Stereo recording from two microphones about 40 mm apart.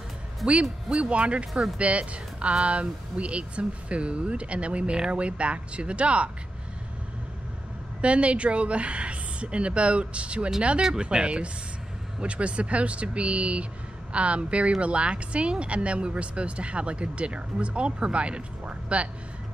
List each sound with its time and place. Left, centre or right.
0.5 s speech: right
8.0 s speech: right
10.8 s speech: right